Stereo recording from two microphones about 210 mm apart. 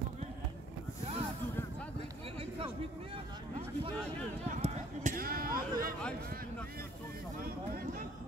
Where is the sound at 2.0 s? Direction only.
25° right (ahead or behind).